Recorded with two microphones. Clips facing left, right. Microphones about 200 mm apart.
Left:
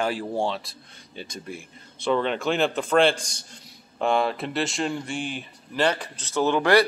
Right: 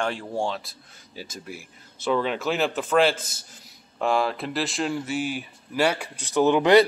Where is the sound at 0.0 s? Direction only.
5° left (ahead or behind).